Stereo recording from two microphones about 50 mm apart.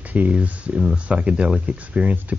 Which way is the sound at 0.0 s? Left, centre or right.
Right.